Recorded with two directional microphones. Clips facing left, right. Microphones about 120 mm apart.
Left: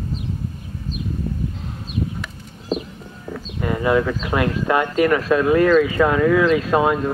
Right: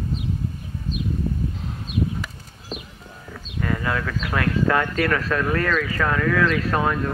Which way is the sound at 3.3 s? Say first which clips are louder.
Left 3 dB; 20° left (ahead or behind).